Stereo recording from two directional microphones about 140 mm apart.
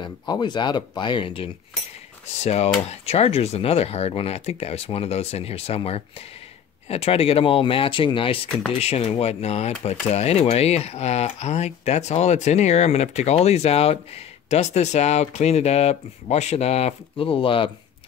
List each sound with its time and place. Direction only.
0.0 s speech: 35° left (ahead or behind)
2.4 s speech: 50° left (ahead or behind)